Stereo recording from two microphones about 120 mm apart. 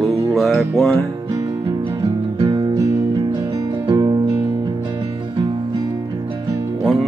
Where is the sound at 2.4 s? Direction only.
40° right (ahead or behind).